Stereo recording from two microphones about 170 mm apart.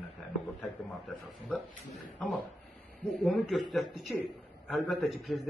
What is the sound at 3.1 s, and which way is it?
A man's voice, centre (ahead or behind).